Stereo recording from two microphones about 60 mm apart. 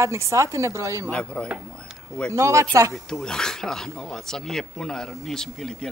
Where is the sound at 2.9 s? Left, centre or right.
Centre.